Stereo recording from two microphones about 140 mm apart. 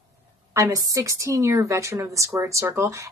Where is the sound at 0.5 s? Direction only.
25° right (ahead or behind).